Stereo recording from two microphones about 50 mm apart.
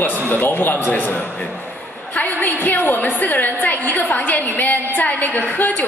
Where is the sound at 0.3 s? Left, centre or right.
Left.